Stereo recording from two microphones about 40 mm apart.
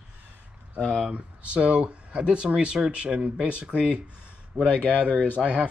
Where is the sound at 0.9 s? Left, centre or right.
Right.